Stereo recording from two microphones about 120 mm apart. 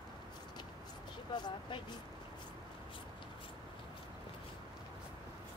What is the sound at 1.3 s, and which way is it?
Speech, 40° left (ahead or behind).